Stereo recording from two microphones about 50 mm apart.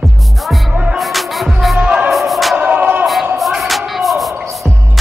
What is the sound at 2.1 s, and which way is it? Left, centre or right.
Music, centre.